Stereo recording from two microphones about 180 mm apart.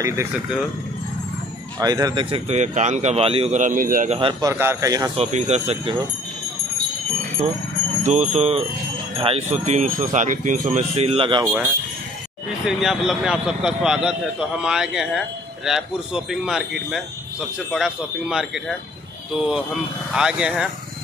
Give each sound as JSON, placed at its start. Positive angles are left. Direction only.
{"t": 0.0, "sound": "speech", "side_deg": -15}
{"t": 1.8, "sound": "speech", "side_deg": -20}
{"t": 4.2, "sound": "speech", "side_deg": -25}
{"t": 5.1, "sound": "speech", "side_deg": -35}
{"t": 8.0, "sound": "speech", "side_deg": -40}
{"t": 11.4, "sound": "speech", "side_deg": -15}
{"t": 12.6, "sound": "a man's voice", "side_deg": -5}
{"t": 20.1, "sound": "a man's voice", "side_deg": -5}